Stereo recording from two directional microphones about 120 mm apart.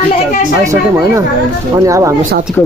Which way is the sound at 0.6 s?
25° right (ahead or behind).